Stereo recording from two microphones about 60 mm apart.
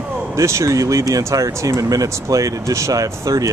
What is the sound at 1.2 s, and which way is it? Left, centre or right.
Speech, right.